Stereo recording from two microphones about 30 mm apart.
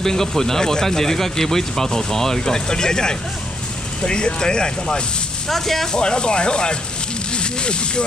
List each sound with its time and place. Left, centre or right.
0.0 s speech: centre; by 5.0 s left
5.5 s speech: centre
5.9 s speech: left
7.3 s a sound: left